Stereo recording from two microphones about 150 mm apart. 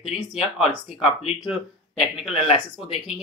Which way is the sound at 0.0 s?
5° right (ahead or behind).